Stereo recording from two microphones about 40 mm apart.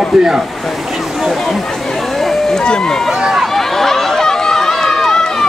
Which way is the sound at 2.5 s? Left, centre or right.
Centre.